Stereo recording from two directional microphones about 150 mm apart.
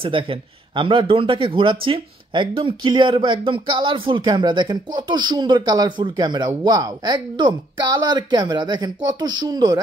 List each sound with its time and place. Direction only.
0.0 s a man's voice: 35° right (ahead or behind)